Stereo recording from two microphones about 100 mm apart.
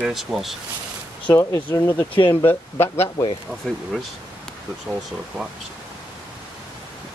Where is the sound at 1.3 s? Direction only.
30° left (ahead or behind).